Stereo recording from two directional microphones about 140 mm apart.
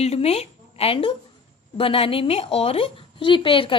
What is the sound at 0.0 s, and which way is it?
A woman's voice, 50° left (ahead or behind).